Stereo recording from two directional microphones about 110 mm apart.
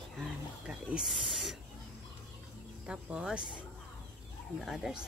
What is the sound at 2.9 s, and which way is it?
Speech, 5° right (ahead or behind).